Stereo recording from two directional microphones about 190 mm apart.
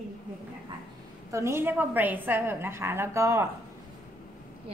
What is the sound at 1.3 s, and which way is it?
A woman's voice, 15° right (ahead or behind).